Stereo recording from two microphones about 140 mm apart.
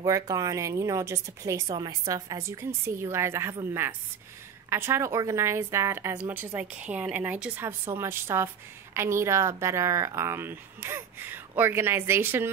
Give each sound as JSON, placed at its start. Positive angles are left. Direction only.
{"t": 0.0, "sound": "a woman's voice", "side_deg": -25}